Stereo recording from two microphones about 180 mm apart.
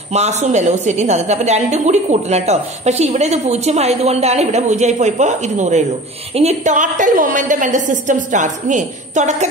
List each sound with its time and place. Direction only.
0.1 s a woman's voice: 40° right (ahead or behind)